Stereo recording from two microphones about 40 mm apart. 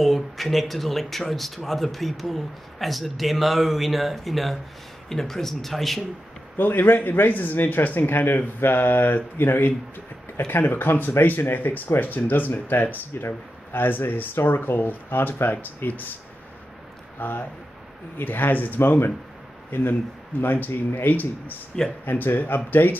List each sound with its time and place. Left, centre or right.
0.0 s speech: centre
6.5 s speech: left
17.2 s speech: left